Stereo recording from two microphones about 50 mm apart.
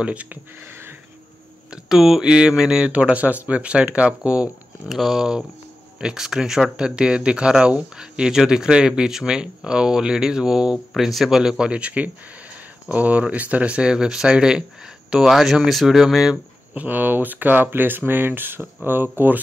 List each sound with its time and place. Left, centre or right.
0.0 s speech: right
1.7 s speech: centre
2.2 s speech: centre
4.8 s speech: centre
7.0 s speech: centre
10.9 s speech: centre
11.2 s speech: centre
16.7 s speech: right